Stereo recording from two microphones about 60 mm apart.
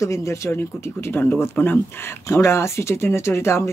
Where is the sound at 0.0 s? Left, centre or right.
Left.